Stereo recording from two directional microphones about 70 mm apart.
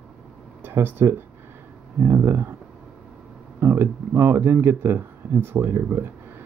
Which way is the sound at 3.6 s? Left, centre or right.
Right.